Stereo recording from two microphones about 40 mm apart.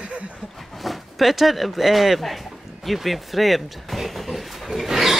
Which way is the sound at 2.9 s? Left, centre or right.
Centre.